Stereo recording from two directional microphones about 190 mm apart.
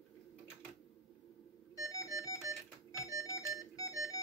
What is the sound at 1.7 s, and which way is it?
Organ, 15° left (ahead or behind).